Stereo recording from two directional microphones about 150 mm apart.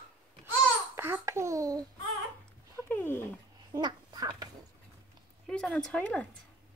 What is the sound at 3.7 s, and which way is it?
Duck, 30° right (ahead or behind).